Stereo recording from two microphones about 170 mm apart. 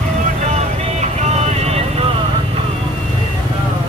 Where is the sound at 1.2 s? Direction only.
40° right (ahead or behind).